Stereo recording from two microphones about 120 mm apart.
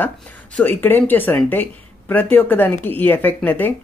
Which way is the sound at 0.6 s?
15° left (ahead or behind).